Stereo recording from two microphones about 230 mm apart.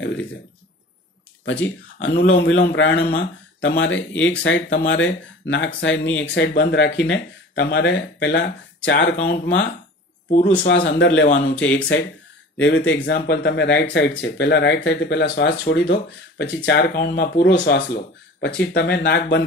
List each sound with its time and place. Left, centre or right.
0.0 s speech: left
2.0 s speech: left
4.4 s speech: left
10.2 s speech: left
10.6 s speech: left
11.2 s speech: left
11.6 s speech: left